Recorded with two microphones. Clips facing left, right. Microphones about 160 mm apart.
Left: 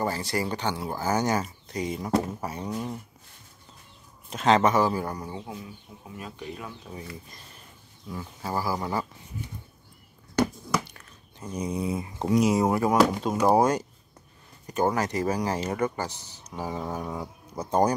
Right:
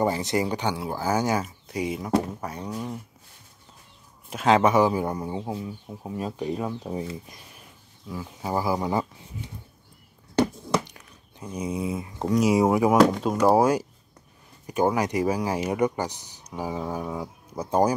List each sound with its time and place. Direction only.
0.0 s speech: 20° right (ahead or behind)
2.2 s a sound: 5° left (ahead or behind)
4.3 s speech: 10° right (ahead or behind); by 7.2 s 30° right (ahead or behind)
7.2 s speech: 10° right (ahead or behind)
8.5 s speech: 20° right (ahead or behind)
10.9 s speech: 15° right (ahead or behind)
13.0 s a sound: 5° left (ahead or behind)
13.6 s speech: 5° right (ahead or behind)